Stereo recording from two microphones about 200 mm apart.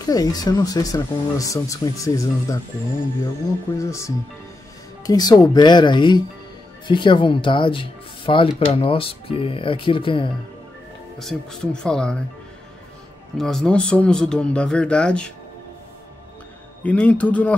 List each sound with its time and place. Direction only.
0.0 s speech: 20° left (ahead or behind)
3.7 s speech: 15° left (ahead or behind)
11.1 s speech: 5° left (ahead or behind)
13.4 s speech: centre (ahead or behind)
16.8 s speech: 5° left (ahead or behind)